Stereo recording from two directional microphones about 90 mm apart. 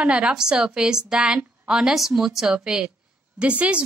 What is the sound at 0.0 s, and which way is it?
Speech, 10° right (ahead or behind).